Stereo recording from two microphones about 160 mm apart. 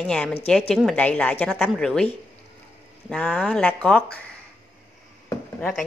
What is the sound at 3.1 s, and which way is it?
Speech, 5° left (ahead or behind).